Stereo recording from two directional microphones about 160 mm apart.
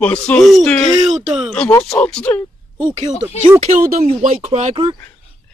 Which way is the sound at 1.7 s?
10° left (ahead or behind).